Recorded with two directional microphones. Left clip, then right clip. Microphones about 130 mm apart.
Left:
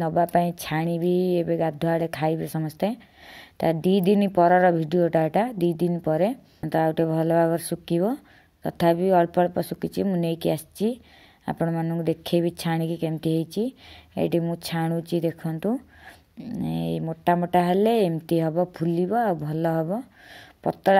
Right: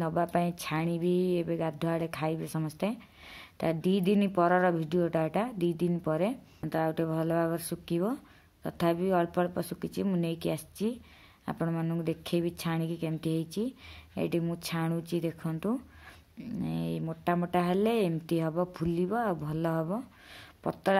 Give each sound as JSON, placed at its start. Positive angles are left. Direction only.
{"t": 0.0, "sound": "speech", "side_deg": 25}
{"t": 16.6, "sound": "speech", "side_deg": 35}